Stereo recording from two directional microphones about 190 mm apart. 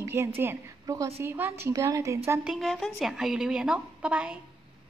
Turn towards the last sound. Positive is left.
turn(degrees=-5)  # may be behind; listen again after turning